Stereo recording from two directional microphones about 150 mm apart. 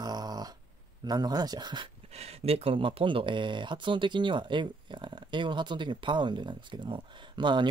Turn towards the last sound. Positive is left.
turn(degrees=-30)  # may be behind; listen again after turning